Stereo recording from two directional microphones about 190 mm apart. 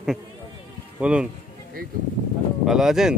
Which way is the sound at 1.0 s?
5° right (ahead or behind).